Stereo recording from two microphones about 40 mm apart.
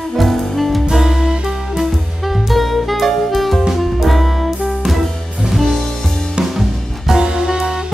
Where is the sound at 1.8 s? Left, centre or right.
Centre.